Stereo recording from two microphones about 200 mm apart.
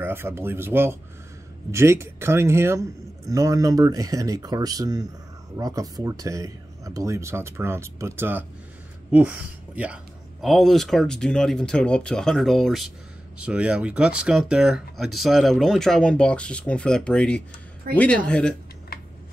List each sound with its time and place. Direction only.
0.0 s a man's voice: 10° right (ahead or behind); by 18.5 s 5° left (ahead or behind)